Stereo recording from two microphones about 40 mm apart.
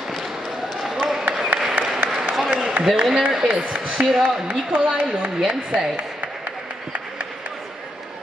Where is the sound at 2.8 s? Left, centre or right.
Centre.